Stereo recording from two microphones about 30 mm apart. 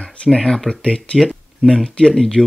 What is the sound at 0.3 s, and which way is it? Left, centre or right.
Speech, left.